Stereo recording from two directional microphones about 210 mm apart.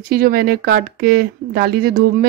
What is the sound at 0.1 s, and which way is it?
Speech, 45° right (ahead or behind).